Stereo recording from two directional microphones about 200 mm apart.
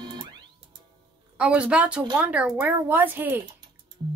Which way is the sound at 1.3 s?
5° right (ahead or behind).